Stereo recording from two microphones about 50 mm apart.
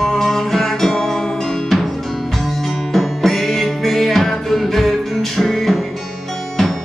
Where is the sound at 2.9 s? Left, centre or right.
Centre.